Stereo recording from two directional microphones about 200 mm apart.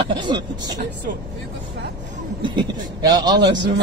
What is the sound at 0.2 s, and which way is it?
Speech, 25° right (ahead or behind).